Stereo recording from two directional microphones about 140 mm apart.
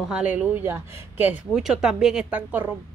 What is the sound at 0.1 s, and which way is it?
Speech, 10° right (ahead or behind).